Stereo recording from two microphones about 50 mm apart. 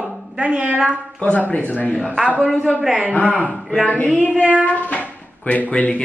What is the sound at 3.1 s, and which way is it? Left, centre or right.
Speech, left.